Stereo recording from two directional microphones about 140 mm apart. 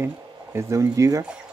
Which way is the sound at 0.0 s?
20° right (ahead or behind).